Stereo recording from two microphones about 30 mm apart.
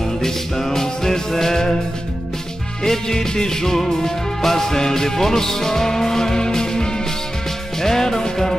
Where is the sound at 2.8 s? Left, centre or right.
Centre.